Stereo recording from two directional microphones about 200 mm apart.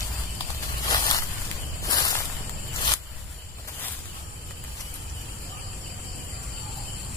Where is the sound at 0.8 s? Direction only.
15° left (ahead or behind).